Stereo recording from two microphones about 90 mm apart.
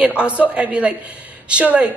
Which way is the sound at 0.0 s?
10° right (ahead or behind).